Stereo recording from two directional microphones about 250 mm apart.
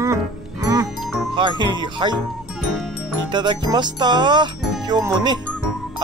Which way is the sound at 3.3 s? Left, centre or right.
Centre.